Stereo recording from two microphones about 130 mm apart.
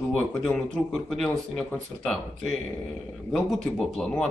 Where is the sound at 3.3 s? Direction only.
5° left (ahead or behind).